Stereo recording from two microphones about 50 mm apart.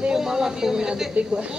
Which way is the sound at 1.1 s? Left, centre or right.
Right.